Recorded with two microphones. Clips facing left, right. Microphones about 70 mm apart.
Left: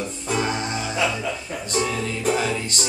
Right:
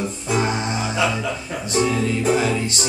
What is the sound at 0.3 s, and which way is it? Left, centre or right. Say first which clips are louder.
Music: right 2 dB; right.